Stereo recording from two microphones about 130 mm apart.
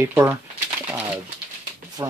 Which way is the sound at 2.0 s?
25° right (ahead or behind).